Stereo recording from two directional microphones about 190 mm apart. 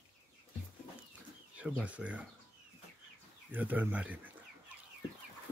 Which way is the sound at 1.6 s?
5° right (ahead or behind).